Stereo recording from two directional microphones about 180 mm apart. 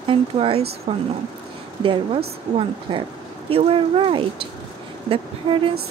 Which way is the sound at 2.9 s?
30° right (ahead or behind).